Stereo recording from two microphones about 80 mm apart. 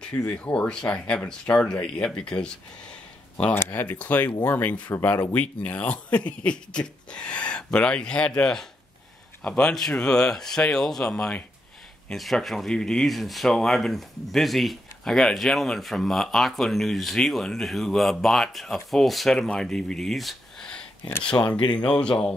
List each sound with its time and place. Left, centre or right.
0.0 s speech: centre
3.5 s speech: left
21.5 s speech: left
21.7 s speech: centre